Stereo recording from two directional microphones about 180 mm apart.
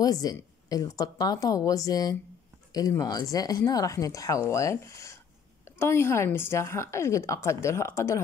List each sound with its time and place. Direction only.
0.0 s a woman's voice: 20° left (ahead or behind)